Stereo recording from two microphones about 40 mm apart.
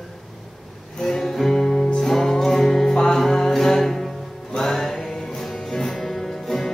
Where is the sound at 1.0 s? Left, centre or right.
Centre.